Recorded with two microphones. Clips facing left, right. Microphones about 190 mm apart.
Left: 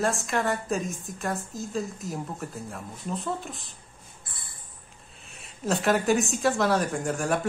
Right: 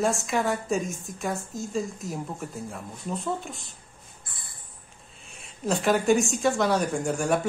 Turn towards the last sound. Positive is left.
turn(degrees=0)  # may be behind; listen again after turning